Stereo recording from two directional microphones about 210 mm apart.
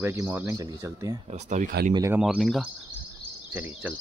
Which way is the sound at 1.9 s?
15° right (ahead or behind).